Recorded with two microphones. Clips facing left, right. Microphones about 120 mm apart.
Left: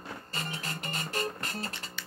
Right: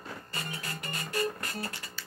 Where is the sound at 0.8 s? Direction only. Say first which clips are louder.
Right 3 dB; 25° left (ahead or behind).